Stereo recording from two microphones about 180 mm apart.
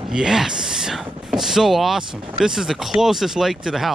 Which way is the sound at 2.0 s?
30° right (ahead or behind).